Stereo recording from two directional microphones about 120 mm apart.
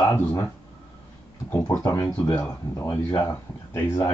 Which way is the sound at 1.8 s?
30° left (ahead or behind).